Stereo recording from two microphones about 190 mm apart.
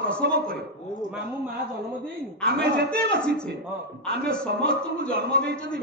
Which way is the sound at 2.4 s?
60° right (ahead or behind).